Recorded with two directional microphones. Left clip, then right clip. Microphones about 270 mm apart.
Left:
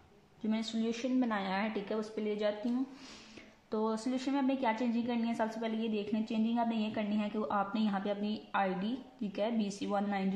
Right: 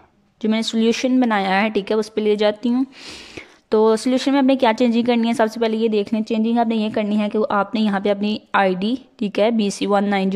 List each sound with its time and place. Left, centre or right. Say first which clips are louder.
0.4 s a woman's voice: right 17 dB; right